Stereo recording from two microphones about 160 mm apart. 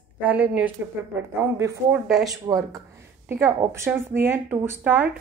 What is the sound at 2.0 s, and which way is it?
Speech, centre (ahead or behind).